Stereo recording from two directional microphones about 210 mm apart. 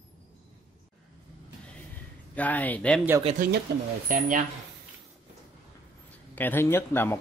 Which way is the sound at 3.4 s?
45° right (ahead or behind).